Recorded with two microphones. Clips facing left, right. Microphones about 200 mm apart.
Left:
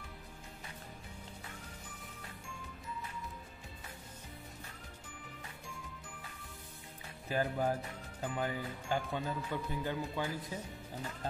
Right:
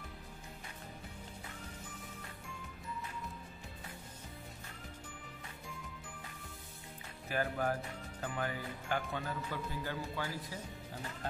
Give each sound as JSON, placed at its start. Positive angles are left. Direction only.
{"t": 7.2, "sound": "speech", "side_deg": 20}